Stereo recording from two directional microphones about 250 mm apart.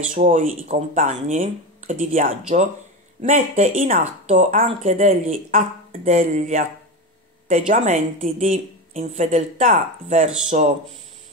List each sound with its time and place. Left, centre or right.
0.1 s a woman's voice: right